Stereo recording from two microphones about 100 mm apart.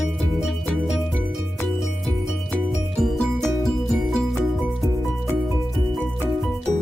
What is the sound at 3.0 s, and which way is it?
Music, 5° left (ahead or behind).